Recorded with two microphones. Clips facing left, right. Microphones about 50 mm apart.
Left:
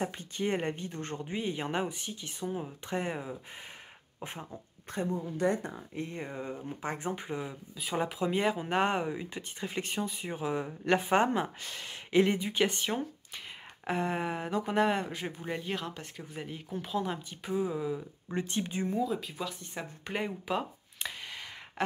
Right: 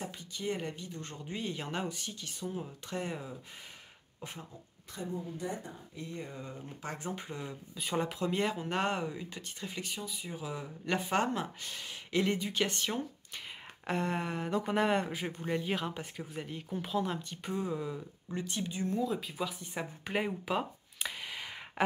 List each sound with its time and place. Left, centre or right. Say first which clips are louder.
0.0 s speech: left 6 dB; left
1.2 s speech: left 3 dB; centre
5.1 s speech: left 8 dB; left
5.9 s speech: left 4 dB; left; by 7.5 s centre
7.7 s speech: left 1 dB; centre; by 9.8 s left
9.8 s speech: left 7 dB; left; by 18.0 s centre
18.3 s speech: left 4 dB; left
19.0 s speech: even; centre